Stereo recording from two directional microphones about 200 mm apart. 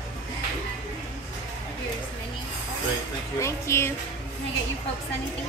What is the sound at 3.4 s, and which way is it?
Speech, 15° left (ahead or behind).